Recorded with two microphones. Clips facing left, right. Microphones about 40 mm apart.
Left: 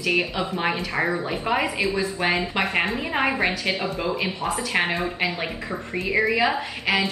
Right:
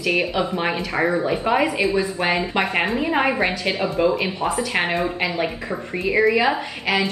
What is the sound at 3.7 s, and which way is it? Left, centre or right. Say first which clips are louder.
Speech: right 3 dB; right.